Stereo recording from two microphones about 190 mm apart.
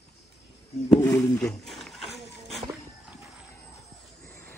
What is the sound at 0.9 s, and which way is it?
Wild animals, 10° left (ahead or behind).